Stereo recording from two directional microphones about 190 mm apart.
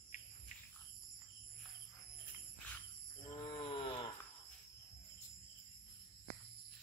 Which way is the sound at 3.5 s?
25° left (ahead or behind).